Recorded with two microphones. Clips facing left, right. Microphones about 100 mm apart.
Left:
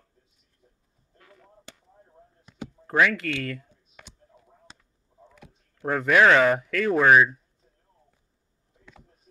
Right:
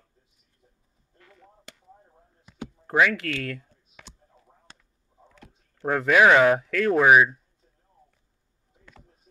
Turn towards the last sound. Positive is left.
turn(degrees=-10)  # may be behind; listen again after turning